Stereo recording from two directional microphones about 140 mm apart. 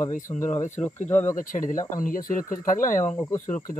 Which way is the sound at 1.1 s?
15° left (ahead or behind).